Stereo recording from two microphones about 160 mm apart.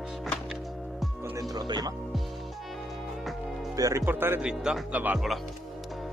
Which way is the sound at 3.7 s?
20° right (ahead or behind).